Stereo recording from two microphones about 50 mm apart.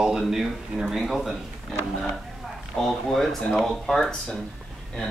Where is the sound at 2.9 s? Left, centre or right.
Centre.